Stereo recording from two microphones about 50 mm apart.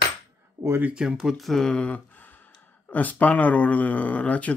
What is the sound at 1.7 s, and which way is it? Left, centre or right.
Speech, left.